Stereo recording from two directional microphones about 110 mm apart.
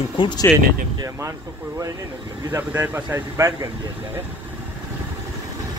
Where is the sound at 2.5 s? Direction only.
20° right (ahead or behind).